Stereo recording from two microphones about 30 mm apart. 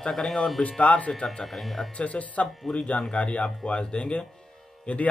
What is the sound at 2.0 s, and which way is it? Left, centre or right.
Speech, left.